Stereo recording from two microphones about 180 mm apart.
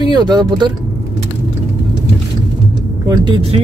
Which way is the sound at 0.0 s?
25° right (ahead or behind).